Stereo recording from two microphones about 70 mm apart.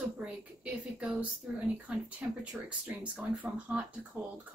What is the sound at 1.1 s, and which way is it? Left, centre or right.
Speech, centre.